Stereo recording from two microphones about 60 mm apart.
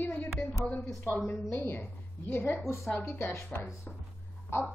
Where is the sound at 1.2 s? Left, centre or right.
Left.